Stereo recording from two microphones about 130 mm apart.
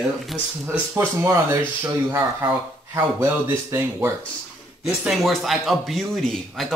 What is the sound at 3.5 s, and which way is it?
Speech, 20° right (ahead or behind).